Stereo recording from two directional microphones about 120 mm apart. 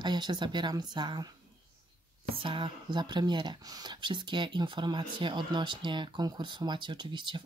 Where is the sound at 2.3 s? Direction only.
45° right (ahead or behind).